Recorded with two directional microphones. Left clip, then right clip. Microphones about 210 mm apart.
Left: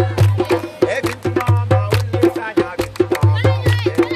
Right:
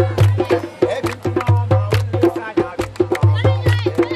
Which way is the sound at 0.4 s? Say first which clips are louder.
Even; 40° left (ahead or behind).